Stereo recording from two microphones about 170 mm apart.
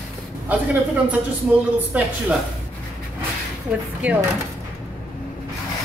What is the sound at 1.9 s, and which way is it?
Speech, 10° right (ahead or behind).